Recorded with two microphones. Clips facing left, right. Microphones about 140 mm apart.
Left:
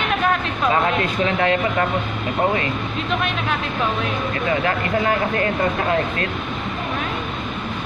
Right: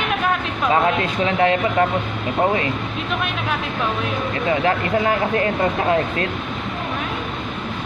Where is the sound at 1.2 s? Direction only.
20° right (ahead or behind).